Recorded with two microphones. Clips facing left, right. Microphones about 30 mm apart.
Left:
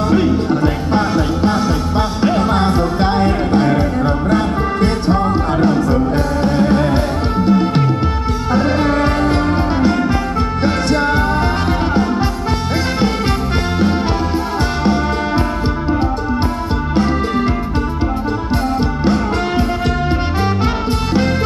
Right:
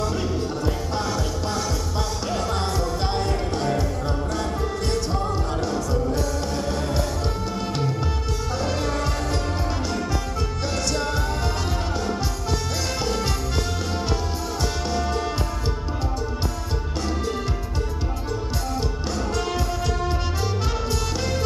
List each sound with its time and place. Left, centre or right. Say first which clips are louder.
0.1 s music: left 12 dB; left
16.9 s music: left 11 dB; left
18.8 s music: left 11 dB; left